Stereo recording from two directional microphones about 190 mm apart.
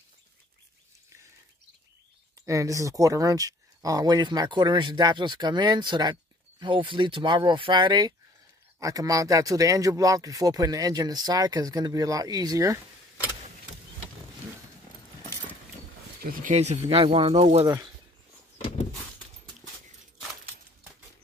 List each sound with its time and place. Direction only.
2.4 s speech: 15° right (ahead or behind)
16.2 s speech: 50° right (ahead or behind)
16.5 s speech: 35° right (ahead or behind)